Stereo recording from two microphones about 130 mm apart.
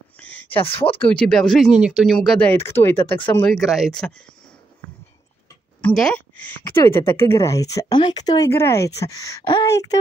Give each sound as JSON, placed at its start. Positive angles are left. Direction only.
{"t": 0.2, "sound": "a sound", "side_deg": 10}
{"t": 1.1, "sound": "speech", "side_deg": 5}
{"t": 2.7, "sound": "speech", "side_deg": 15}
{"t": 3.4, "sound": "speech", "side_deg": 0}
{"t": 5.8, "sound": "speech", "side_deg": 10}
{"t": 9.4, "sound": "speech", "side_deg": 35}
{"t": 9.7, "sound": "speech", "side_deg": 25}